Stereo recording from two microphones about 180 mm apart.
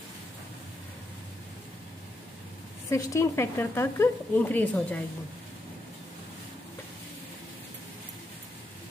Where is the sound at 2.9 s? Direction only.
15° left (ahead or behind).